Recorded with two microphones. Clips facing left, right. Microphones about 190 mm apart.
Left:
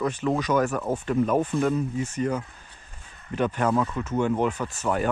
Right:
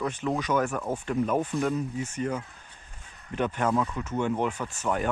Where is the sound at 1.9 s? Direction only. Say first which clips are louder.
Left 4 dB; 10° right (ahead or behind).